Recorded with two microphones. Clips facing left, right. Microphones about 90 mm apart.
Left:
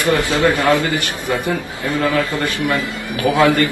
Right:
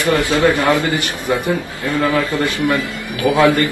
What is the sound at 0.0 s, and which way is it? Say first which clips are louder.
Speech: right 1 dB; 25° left (ahead or behind).